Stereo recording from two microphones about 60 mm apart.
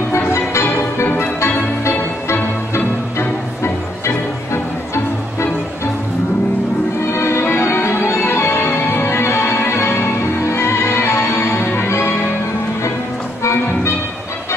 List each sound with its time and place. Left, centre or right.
0.1 s music: left
1.0 s music: left
2.7 s music: left
7.1 s music: left
13.4 s music: left